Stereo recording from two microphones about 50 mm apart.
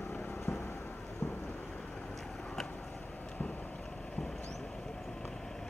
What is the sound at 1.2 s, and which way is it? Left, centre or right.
Rain, left.